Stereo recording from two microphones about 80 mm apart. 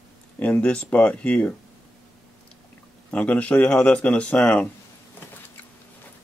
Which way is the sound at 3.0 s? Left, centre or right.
Centre.